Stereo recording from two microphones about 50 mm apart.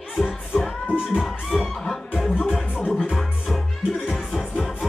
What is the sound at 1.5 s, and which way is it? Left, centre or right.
Music, centre.